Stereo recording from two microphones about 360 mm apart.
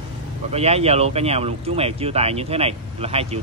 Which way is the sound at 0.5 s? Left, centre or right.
Centre.